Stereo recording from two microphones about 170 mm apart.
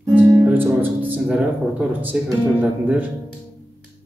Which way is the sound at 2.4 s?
10° right (ahead or behind).